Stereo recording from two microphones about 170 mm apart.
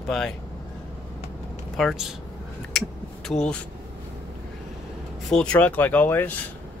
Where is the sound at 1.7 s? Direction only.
Centre (ahead or behind).